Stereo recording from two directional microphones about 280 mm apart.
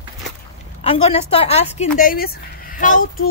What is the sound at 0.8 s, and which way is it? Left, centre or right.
A woman's voice, centre.